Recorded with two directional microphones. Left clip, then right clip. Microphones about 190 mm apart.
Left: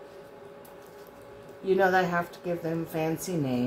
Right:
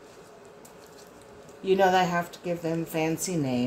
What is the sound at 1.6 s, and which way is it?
A woman's voice, 20° right (ahead or behind).